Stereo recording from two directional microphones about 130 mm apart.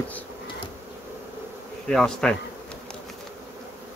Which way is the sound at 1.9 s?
5° left (ahead or behind).